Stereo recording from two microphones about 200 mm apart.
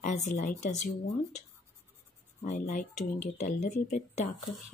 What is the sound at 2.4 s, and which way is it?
Speech, 40° left (ahead or behind).